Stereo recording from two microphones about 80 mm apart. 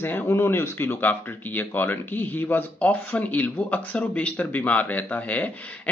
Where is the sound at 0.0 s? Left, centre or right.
Left.